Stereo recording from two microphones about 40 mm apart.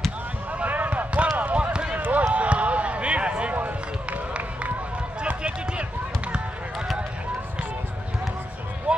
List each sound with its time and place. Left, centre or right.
0.5 s basketball bounce: right
2.0 s basketball bounce: right
5.2 s basketball bounce: right
8.9 s music: right